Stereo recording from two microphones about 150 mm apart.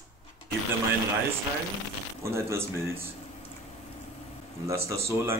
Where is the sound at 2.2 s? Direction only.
15° right (ahead or behind).